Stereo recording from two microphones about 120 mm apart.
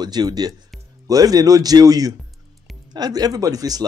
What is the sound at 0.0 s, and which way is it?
Speech, 35° right (ahead or behind).